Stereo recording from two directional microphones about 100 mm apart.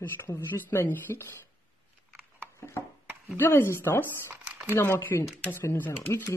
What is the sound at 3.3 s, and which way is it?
Speech, 25° left (ahead or behind).